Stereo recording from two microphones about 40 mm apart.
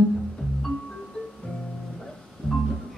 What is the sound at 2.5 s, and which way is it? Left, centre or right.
Music, centre.